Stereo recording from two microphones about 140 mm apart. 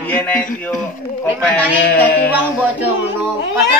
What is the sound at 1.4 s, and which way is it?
Speech, 10° left (ahead or behind).